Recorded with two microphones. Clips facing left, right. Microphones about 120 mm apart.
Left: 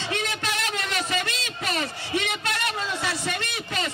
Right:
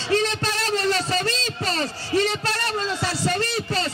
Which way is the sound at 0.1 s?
35° right (ahead or behind).